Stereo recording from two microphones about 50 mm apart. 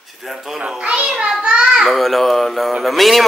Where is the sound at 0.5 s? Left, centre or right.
Centre.